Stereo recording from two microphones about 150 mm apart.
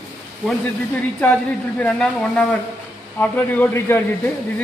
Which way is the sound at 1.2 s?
5° left (ahead or behind).